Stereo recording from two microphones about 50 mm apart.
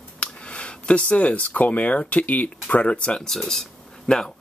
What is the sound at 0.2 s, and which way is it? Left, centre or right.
Speech, left.